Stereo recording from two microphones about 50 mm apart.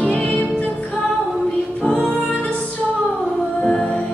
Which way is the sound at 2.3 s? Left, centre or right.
Left.